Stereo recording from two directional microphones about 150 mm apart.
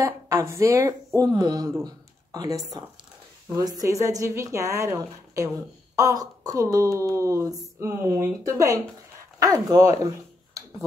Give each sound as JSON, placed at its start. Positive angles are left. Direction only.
{"t": 0.0, "sound": "speech", "side_deg": -20}